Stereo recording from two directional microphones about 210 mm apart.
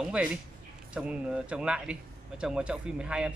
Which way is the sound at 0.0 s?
5° right (ahead or behind).